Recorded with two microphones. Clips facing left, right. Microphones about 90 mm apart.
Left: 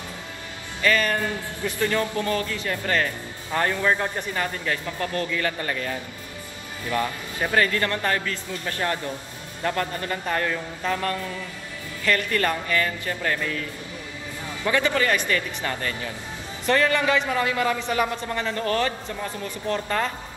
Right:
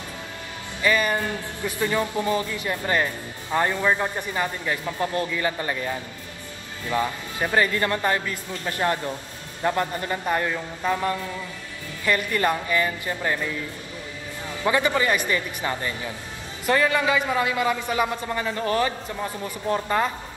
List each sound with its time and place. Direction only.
0.8 s a man's voice: 15° right (ahead or behind)